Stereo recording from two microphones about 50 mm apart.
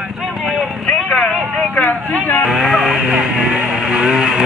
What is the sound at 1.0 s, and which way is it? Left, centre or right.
Vehicle, centre.